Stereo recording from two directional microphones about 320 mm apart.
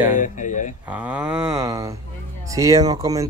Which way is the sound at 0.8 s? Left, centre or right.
Centre.